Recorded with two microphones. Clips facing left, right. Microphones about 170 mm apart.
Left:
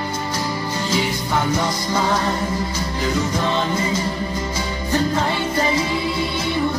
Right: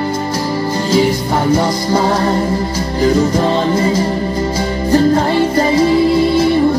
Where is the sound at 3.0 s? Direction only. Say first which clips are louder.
Right 10 dB; 35° right (ahead or behind).